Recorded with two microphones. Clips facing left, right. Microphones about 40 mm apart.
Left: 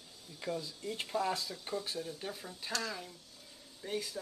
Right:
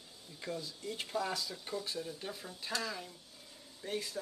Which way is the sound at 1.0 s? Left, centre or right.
Centre.